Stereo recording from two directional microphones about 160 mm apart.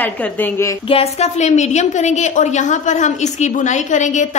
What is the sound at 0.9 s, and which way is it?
A woman's voice, 40° left (ahead or behind).